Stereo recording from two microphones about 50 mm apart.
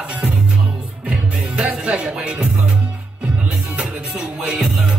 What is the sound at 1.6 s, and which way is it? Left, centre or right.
Music, right.